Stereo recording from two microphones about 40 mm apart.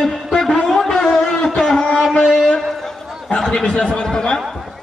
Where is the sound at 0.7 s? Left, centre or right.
Centre.